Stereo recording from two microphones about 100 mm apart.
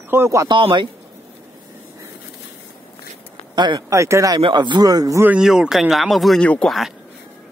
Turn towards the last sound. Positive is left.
turn(degrees=10)  # may be behind; listen again after turning